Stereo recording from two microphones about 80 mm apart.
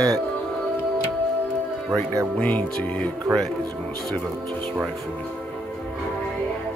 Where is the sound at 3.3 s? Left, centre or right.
Right.